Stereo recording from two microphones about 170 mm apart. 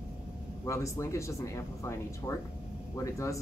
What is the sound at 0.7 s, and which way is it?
Speech, 15° left (ahead or behind).